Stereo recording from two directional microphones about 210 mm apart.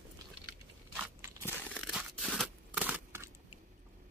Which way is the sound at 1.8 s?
5° right (ahead or behind).